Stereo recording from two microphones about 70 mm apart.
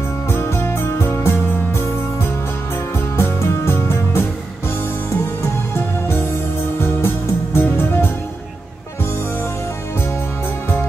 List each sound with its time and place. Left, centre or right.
0.3 s music: left
3.2 s music: left
5.8 s music: left
7.5 s music: left